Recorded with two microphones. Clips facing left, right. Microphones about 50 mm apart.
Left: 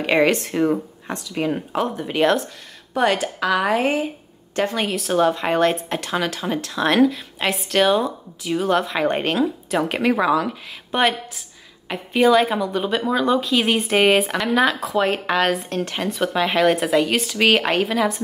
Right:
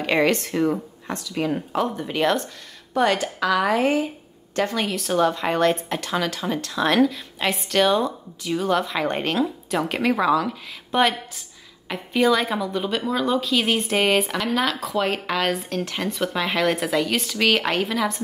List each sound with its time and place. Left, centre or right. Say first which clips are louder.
0.0 s speech: left 2 dB; centre
3.0 s speech: left 1 dB; centre
4.9 s speech: left 2 dB; centre
9.1 s speech: left 3 dB; centre
16.7 s speech: left 4 dB; centre
17.0 s speech: left 3 dB; centre